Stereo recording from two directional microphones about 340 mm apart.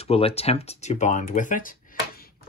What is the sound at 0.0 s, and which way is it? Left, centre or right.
Speech, centre.